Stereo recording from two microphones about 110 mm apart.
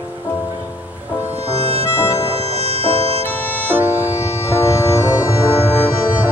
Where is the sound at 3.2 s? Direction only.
15° left (ahead or behind).